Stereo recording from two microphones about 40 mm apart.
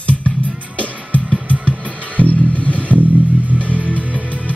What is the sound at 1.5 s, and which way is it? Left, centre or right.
Music, right.